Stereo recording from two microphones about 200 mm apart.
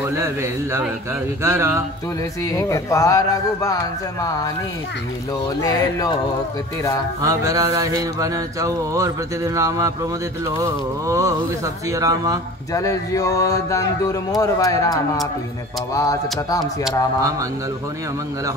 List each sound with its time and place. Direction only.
0.0 s mantra: 15° right (ahead or behind)
2.4 s mantra: 15° left (ahead or behind)
5.6 s mantra: 15° left (ahead or behind)
7.2 s mantra: 15° right (ahead or behind)
12.7 s mantra: 15° left (ahead or behind)